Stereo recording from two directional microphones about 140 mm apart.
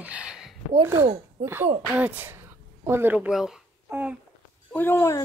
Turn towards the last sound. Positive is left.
turn(degrees=15)  # may be behind; listen again after turning